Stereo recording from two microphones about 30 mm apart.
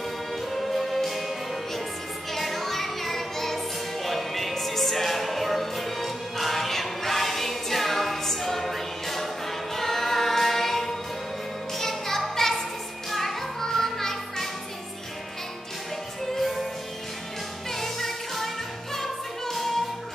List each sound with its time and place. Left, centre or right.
0.5 s music: centre
11.8 s a sound: centre
13.1 s music: centre
16.3 s music: centre
17.6 s music: centre